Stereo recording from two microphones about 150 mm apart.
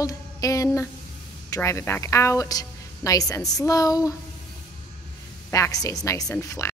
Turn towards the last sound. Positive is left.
turn(degrees=20)  # may be behind; listen again after turning